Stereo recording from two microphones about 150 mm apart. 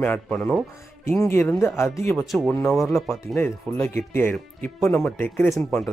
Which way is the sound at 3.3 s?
15° left (ahead or behind).